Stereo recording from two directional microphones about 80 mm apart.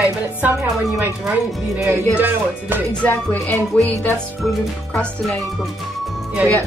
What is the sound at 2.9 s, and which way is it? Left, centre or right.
Music, centre.